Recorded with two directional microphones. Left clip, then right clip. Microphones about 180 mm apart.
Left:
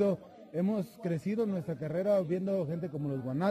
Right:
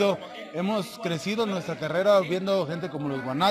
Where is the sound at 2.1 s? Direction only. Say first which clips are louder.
Right 8 dB; 25° left (ahead or behind).